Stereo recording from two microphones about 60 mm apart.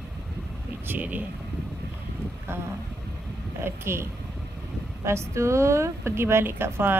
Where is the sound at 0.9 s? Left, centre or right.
Right.